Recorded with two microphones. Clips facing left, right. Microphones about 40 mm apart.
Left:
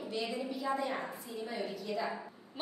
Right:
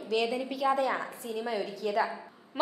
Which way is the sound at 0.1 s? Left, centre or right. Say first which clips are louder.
Right 9 dB; right.